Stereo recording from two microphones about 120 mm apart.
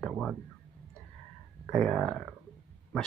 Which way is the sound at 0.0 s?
Centre (ahead or behind).